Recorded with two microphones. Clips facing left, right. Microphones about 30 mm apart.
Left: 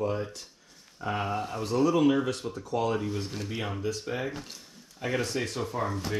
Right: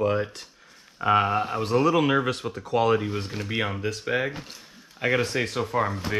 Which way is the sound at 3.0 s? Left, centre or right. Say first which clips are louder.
Right 3 dB; right.